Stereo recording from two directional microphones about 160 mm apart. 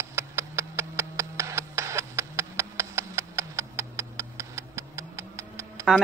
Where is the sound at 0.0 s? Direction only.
20° right (ahead or behind).